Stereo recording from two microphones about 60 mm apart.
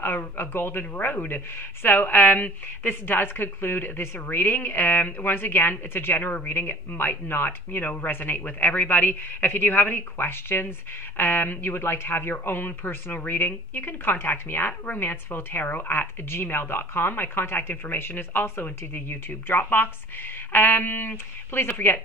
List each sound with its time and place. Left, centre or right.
0.4 s speech: left